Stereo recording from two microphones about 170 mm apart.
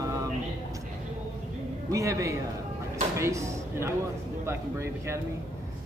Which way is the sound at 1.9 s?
20° right (ahead or behind).